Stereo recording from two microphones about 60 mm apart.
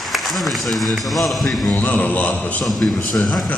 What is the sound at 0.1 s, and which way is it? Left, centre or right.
A man's voice, centre.